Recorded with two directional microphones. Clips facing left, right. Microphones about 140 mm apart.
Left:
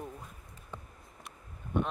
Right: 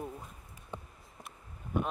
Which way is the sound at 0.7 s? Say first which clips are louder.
Right 2 dB; 20° right (ahead or behind).